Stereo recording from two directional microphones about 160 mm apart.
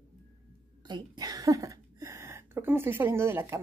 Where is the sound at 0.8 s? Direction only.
25° right (ahead or behind).